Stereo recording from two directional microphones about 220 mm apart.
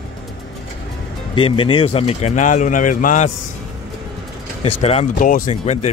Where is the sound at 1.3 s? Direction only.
25° left (ahead or behind).